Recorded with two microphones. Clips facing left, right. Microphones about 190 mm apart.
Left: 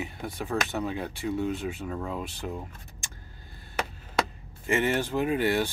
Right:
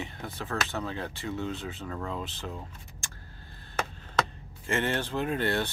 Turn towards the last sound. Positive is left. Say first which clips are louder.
# left 3 dB
turn(degrees=10)  # may be behind; listen again after turning